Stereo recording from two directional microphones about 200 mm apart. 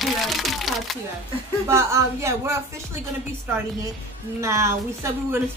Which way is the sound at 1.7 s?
15° right (ahead or behind).